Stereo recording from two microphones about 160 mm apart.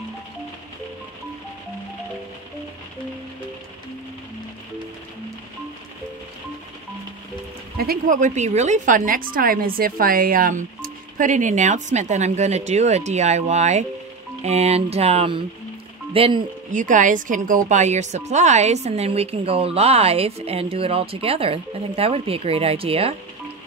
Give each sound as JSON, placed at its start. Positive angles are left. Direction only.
{"t": 7.7, "sound": "a woman's voice", "side_deg": -70}
{"t": 16.7, "sound": "a woman's voice", "side_deg": -55}